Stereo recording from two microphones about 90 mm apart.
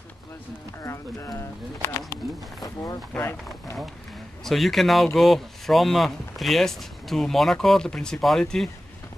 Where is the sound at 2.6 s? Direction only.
45° left (ahead or behind).